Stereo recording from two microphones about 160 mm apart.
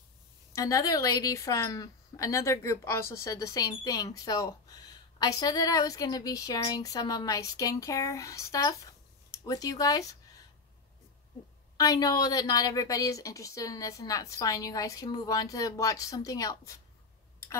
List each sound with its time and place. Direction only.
0.6 s a woman's voice: 20° left (ahead or behind)
11.7 s a woman's voice: 20° left (ahead or behind)